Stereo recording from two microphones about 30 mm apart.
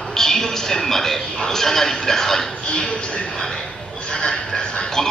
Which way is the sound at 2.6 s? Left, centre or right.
Left.